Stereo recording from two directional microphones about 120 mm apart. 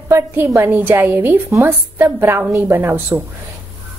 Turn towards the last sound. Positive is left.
turn(degrees=-20)  # may be behind; listen again after turning